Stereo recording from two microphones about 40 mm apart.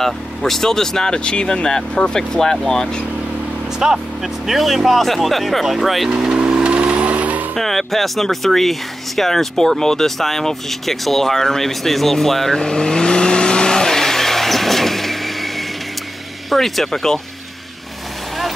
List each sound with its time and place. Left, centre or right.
0.0 s speech: centre
3.8 s speech: centre
4.5 s speech: centre
6.0 s vehicle: right
7.5 s speech: centre
12.5 s vehicle: centre
16.4 s speech: centre